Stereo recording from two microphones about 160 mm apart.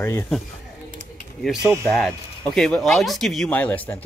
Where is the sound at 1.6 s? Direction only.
15° right (ahead or behind).